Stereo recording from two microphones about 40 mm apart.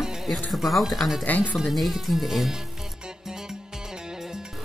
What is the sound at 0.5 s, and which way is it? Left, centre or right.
Speech, centre.